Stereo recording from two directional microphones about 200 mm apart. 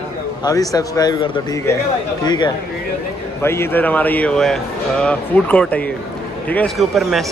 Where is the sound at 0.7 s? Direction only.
15° left (ahead or behind).